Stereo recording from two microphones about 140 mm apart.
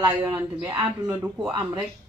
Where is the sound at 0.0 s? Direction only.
20° right (ahead or behind).